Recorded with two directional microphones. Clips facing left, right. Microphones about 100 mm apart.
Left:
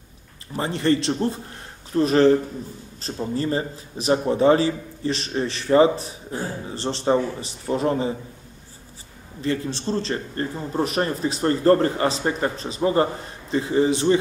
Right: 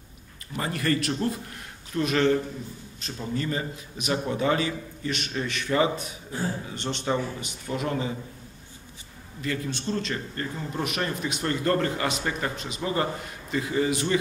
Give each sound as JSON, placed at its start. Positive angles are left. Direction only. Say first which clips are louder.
{"t": 0.5, "sound": "a man's voice", "louder": "left 6 dB", "side_deg": 30}
{"t": 9.4, "sound": "a man's voice", "louder": "left 5 dB", "side_deg": 30}